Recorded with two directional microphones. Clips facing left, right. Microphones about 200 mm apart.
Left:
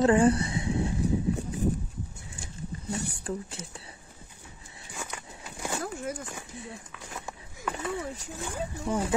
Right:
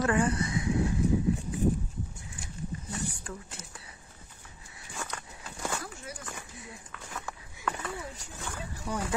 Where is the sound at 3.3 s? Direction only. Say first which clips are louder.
Left 8 dB; 30° left (ahead or behind).